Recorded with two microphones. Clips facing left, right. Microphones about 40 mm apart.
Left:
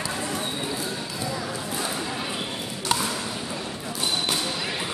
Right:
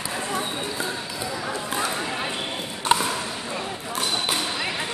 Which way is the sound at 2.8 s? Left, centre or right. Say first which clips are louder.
Right 5 dB; right.